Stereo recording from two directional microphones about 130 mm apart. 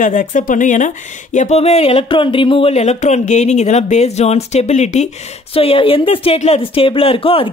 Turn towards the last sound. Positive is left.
turn(degrees=45)  # may be behind; listen again after turning